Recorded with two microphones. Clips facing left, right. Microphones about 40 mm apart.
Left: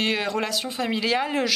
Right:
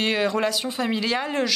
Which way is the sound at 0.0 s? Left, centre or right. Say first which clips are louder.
Right 2 dB; centre.